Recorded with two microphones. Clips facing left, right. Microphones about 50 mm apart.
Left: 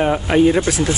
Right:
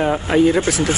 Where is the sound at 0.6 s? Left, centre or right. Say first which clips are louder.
Even; right.